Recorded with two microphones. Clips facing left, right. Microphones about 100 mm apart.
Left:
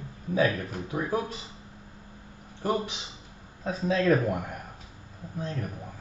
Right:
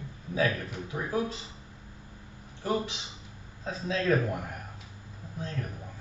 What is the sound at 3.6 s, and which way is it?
Speech, 50° left (ahead or behind).